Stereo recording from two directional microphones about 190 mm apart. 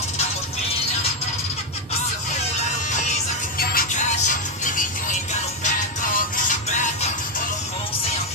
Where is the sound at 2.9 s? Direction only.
45° left (ahead or behind).